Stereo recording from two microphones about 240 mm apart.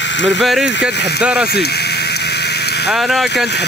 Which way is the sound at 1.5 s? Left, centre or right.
Left.